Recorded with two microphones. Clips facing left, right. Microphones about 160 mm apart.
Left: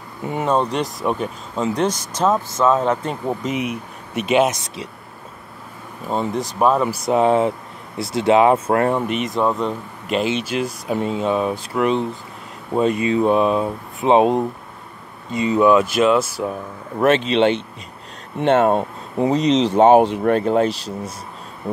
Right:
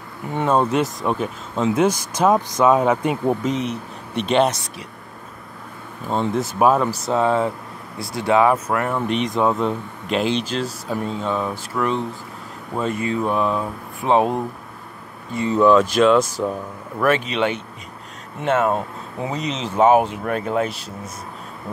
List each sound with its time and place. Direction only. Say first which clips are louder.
0.5 s speech: right 2 dB; 5° right (ahead or behind)
3.4 s speech: right 1 dB; 10° left (ahead or behind)
6.0 s speech: right 1 dB; 5° left (ahead or behind)
6.8 s speech: left 3 dB; 10° left (ahead or behind); by 9.0 s 30° left (ahead or behind)
9.0 s speech: even; centre (ahead or behind)
17.0 s speech: left 4 dB; 25° left (ahead or behind)